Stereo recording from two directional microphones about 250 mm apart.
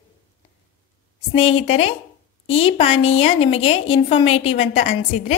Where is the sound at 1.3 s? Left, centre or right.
Left.